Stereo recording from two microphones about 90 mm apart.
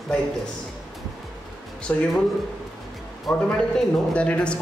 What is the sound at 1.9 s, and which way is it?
Speech, 20° left (ahead or behind).